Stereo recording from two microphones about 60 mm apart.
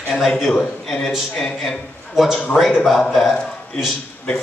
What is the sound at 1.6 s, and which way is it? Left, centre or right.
A man's voice, centre.